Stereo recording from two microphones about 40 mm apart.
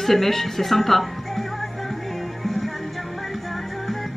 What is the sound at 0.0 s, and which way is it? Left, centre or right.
A woman's voice, centre.